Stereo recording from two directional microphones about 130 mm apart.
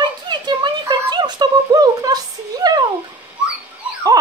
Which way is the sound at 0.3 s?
35° right (ahead or behind).